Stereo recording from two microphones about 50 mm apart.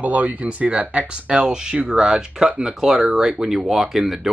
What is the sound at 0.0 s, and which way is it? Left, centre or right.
Speech, right.